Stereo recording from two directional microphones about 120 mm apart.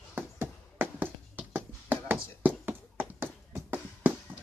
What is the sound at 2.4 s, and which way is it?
Music, 15° right (ahead or behind).